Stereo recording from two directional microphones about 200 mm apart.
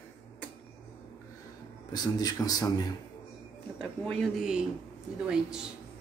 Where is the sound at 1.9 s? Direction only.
20° left (ahead or behind).